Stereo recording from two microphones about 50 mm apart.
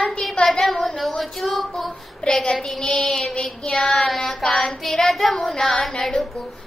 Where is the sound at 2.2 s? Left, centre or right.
Centre.